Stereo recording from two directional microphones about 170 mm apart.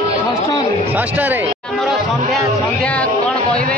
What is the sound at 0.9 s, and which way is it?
Speech, 10° right (ahead or behind).